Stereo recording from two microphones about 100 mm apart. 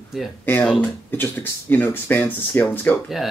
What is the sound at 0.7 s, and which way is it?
Speech, 20° left (ahead or behind).